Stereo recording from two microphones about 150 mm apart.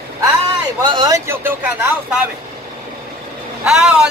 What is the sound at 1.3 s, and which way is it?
Speech, 15° right (ahead or behind).